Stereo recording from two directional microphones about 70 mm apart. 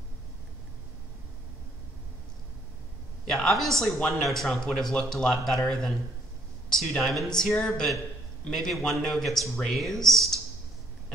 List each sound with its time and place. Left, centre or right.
3.3 s speech: centre